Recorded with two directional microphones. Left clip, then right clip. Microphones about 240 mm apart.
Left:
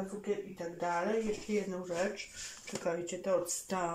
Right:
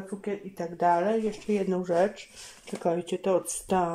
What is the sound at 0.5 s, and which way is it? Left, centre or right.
Speech, right.